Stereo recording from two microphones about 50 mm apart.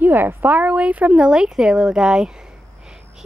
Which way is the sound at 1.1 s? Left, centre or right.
Centre.